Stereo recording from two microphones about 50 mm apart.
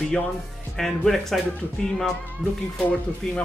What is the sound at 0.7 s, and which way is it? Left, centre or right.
Speech, centre.